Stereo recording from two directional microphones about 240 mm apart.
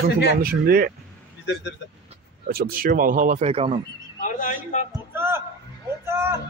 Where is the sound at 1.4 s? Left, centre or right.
Left.